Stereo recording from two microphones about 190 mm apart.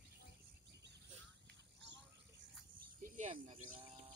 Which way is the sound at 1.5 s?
70° right (ahead or behind).